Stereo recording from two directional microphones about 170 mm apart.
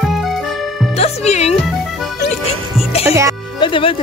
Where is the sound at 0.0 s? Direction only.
Centre (ahead or behind).